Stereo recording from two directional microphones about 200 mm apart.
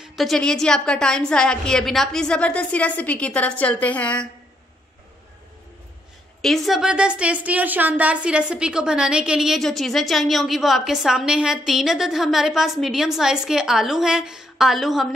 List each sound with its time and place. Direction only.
0.0 s a woman's voice: centre (ahead or behind)
6.4 s a woman's voice: centre (ahead or behind)